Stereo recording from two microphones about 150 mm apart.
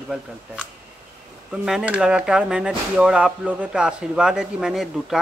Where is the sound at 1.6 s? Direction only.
5° right (ahead or behind).